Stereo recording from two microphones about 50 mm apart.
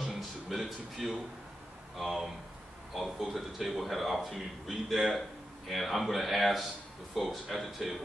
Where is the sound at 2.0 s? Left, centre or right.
Centre.